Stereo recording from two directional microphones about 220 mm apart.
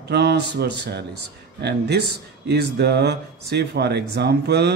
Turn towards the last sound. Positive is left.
turn(degrees=-50)  # may be behind; listen again after turning